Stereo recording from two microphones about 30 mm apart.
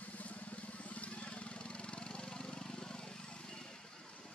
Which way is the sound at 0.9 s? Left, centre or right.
Left.